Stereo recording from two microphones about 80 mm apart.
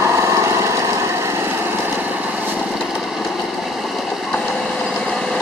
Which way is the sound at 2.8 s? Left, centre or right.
Centre.